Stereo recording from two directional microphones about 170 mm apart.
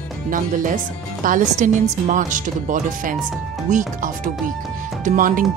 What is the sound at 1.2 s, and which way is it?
Speech, 50° right (ahead or behind).